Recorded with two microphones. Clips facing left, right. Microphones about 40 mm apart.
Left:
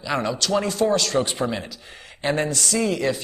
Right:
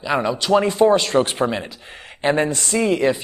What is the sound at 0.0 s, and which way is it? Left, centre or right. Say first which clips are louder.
A man's voice: right 4 dB; centre.